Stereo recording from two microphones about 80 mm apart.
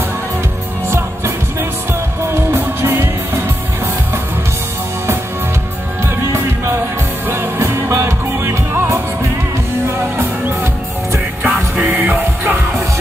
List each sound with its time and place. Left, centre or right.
0.8 s music: right
6.0 s music: right
10.1 s music: right